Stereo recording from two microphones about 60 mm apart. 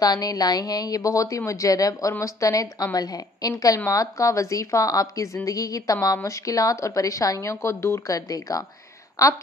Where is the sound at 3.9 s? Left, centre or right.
Left.